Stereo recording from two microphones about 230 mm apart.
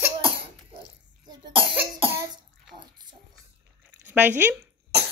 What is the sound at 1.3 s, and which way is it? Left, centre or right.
Speech, right.